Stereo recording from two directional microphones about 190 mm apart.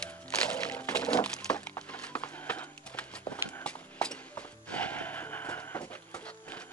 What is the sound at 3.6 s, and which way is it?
Clip-clop, 5° left (ahead or behind).